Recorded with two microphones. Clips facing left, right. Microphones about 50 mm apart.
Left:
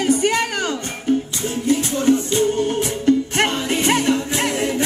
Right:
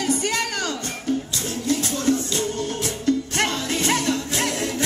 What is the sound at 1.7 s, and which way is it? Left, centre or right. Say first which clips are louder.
Music: left 5 dB; left.